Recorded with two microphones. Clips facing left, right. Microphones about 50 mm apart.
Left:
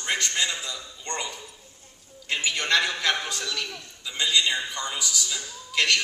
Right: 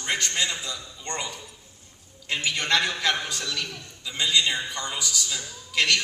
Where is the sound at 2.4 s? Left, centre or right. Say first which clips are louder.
Even; centre.